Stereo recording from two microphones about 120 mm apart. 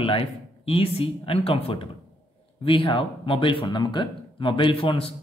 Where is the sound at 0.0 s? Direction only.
50° left (ahead or behind).